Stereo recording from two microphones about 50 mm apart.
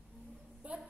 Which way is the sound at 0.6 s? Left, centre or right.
Right.